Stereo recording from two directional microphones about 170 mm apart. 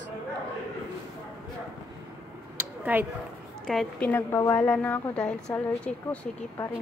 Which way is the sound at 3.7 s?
5° left (ahead or behind).